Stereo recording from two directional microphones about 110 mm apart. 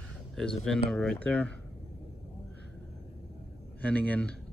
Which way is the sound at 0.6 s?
5° left (ahead or behind).